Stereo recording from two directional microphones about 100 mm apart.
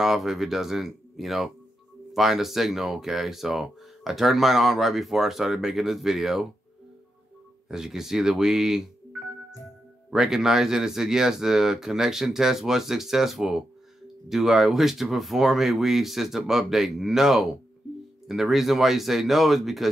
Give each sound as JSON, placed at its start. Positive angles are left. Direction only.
{"t": 0.0, "sound": "speech", "side_deg": -5}
{"t": 7.6, "sound": "speech", "side_deg": -5}
{"t": 10.1, "sound": "speech", "side_deg": -5}